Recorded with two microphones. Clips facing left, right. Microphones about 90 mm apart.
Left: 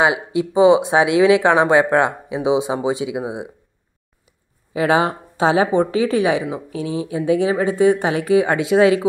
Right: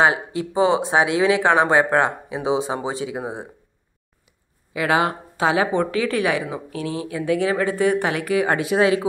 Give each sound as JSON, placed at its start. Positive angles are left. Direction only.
{"t": 0.0, "sound": "speech", "side_deg": 20}
{"t": 0.8, "sound": "speech", "side_deg": -30}
{"t": 1.4, "sound": "speech", "side_deg": 20}
{"t": 4.7, "sound": "speech", "side_deg": 25}